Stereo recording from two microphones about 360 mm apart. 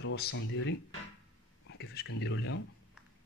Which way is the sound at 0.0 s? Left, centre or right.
Left.